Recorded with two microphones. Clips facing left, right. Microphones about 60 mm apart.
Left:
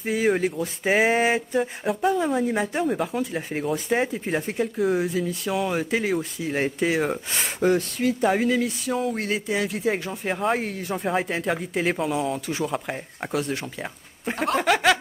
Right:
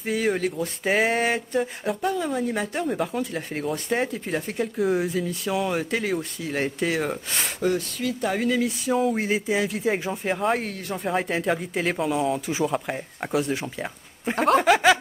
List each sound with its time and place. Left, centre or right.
0.0 s speech: centre
7.6 s speech: left
8.2 s speech: centre